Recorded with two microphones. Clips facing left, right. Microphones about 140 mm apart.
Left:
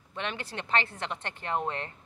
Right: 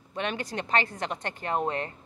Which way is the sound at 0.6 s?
40° right (ahead or behind).